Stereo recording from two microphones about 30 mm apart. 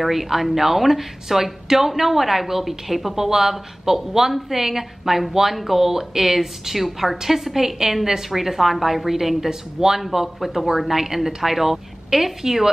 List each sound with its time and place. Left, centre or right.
0.0 s a woman's voice: centre
10.0 s a woman's voice: centre